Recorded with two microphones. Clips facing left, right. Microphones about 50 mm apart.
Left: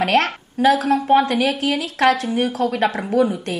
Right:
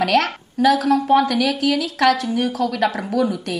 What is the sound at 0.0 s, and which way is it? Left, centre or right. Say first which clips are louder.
A woman's voice: even; left.